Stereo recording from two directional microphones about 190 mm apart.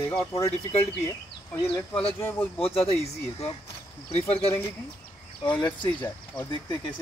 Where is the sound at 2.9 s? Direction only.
30° left (ahead or behind).